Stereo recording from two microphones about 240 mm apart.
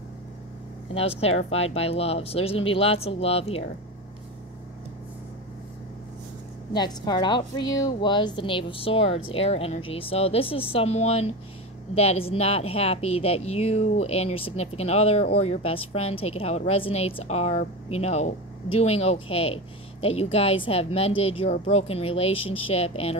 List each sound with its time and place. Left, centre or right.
0.9 s a woman's voice: left
6.7 s a woman's voice: centre